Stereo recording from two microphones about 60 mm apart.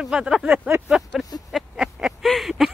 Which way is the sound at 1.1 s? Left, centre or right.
Centre.